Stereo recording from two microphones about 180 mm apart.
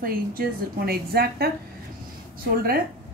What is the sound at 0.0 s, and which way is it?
Speech, 55° right (ahead or behind).